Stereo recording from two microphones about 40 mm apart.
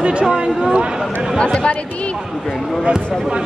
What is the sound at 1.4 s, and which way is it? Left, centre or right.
Speech, left.